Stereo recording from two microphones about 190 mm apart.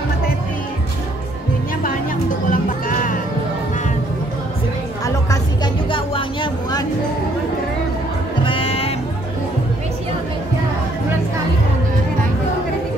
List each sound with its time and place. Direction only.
2.5 s music: 45° left (ahead or behind)
5.0 s a sound: 20° left (ahead or behind)
8.5 s music: 30° left (ahead or behind)